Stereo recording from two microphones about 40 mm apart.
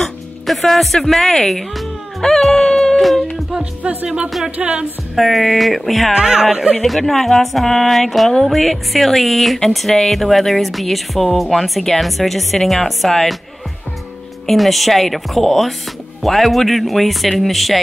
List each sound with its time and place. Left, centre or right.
0.5 s speech: centre
3.8 s music: right
5.1 s speech: centre
6.1 s speech: centre
7.0 s speech: centre
14.4 s speech: centre